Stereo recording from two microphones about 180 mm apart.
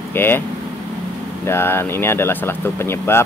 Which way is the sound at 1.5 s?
15° left (ahead or behind).